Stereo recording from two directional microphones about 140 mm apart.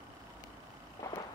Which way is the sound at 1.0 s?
20° left (ahead or behind).